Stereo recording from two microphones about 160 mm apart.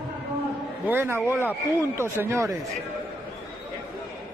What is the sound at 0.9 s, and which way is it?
Speech, 10° right (ahead or behind).